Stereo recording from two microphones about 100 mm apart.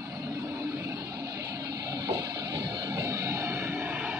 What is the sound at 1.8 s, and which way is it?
Music, 30° right (ahead or behind).